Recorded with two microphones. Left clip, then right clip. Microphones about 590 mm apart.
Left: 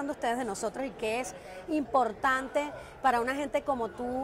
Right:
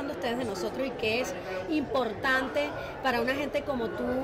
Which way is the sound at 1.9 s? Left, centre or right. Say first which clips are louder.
Left 1 dB; left.